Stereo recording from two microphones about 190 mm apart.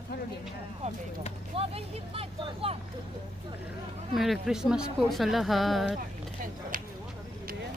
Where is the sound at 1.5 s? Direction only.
30° right (ahead or behind).